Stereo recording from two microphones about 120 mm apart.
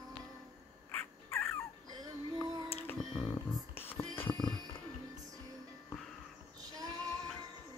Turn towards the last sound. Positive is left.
turn(degrees=-30)  # may be behind; listen again after turning